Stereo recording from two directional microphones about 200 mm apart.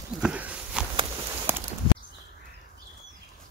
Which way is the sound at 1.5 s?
10° right (ahead or behind).